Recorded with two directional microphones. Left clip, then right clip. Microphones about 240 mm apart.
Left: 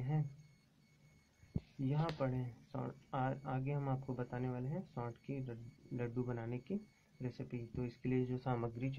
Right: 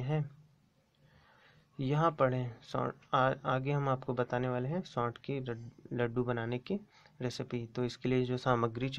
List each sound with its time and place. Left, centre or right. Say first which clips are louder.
1.8 s speech: right 11 dB; right